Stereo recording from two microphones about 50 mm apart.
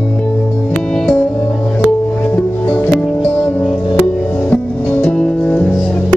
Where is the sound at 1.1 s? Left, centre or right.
Left.